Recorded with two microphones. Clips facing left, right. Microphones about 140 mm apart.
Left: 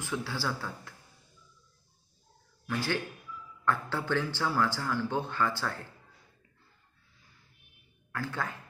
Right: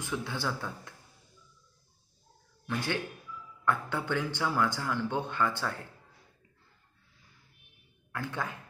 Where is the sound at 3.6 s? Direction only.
15° right (ahead or behind).